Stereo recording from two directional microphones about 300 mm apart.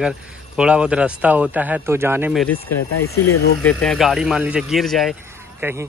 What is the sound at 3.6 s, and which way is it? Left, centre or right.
Speech, centre.